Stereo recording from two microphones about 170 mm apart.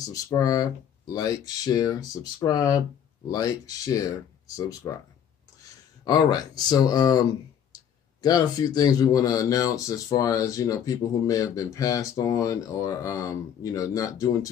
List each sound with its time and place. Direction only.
0.0 s speech: 20° left (ahead or behind)
6.0 s speech: 25° left (ahead or behind)